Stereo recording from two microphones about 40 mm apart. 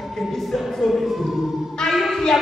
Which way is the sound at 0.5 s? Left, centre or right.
Centre.